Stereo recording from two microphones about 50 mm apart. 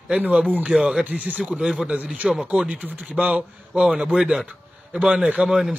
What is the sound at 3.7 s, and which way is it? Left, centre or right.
Speech, centre.